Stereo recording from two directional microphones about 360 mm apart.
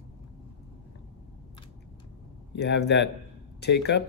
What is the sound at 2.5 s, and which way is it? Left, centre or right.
Speech, left.